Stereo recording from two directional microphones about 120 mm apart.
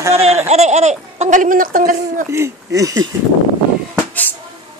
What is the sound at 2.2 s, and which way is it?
Speech, 25° right (ahead or behind).